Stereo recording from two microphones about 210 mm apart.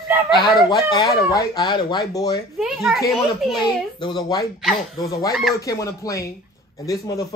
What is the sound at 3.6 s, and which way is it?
Speech, 20° left (ahead or behind).